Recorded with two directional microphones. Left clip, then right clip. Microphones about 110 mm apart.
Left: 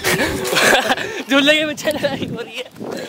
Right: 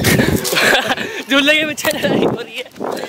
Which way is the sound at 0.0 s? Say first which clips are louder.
Right 3 dB; 10° left (ahead or behind).